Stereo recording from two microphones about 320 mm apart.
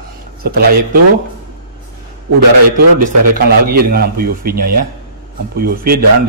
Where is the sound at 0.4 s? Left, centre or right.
Right.